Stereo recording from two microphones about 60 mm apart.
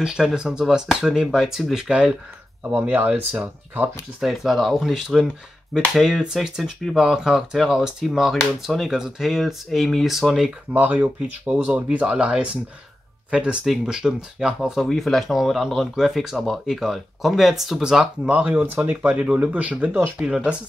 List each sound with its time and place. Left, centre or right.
0.0 s speech: centre
2.7 s speech: right
4.2 s speech: centre
10.7 s speech: right; by 14.9 s centre
14.9 s speech: centre
18.2 s speech: right
20.2 s speech: centre